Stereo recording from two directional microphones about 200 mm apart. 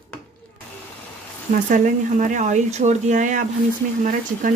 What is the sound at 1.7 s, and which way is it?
Speech, 40° right (ahead or behind).